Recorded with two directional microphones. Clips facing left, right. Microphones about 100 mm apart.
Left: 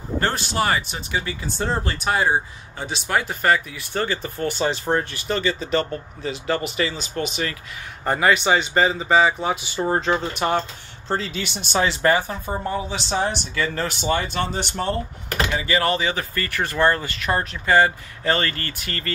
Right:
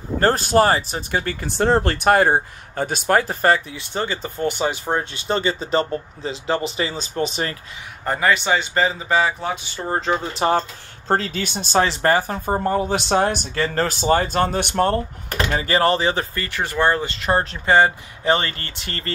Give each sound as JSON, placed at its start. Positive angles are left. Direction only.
{"t": 0.2, "sound": "speech", "side_deg": -40}
{"t": 5.1, "sound": "speech", "side_deg": -30}
{"t": 8.0, "sound": "speech", "side_deg": 5}
{"t": 10.3, "sound": "speech", "side_deg": -35}
{"t": 11.1, "sound": "speech", "side_deg": -45}
{"t": 15.5, "sound": "speech", "side_deg": -40}
{"t": 16.3, "sound": "speech", "side_deg": -20}